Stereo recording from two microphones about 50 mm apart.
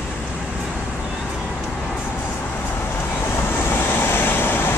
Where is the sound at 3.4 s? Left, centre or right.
Left.